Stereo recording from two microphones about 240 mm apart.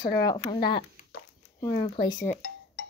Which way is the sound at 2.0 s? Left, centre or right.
Centre.